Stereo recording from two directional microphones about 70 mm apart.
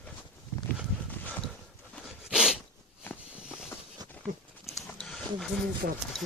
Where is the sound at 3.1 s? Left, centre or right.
Left.